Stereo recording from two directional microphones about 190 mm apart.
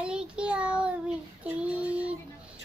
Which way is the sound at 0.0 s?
5° right (ahead or behind).